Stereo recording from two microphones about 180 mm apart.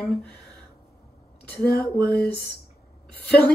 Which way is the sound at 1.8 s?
10° left (ahead or behind).